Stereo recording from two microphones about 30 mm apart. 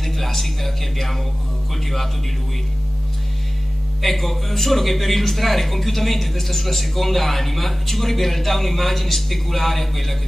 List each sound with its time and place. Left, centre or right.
0.0 s a man's voice: centre
4.0 s a man's voice: centre